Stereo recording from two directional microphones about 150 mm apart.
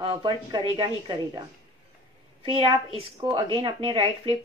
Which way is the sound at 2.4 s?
35° right (ahead or behind).